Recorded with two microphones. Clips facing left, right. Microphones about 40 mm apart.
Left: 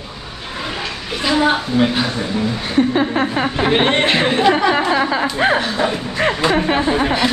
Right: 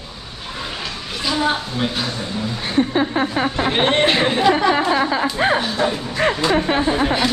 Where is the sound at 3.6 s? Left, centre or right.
Centre.